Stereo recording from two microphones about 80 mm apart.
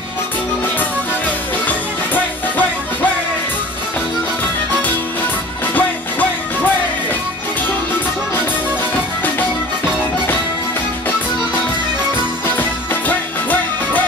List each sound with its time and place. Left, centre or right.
0.7 s music: left
5.8 s music: left
12.4 s music: left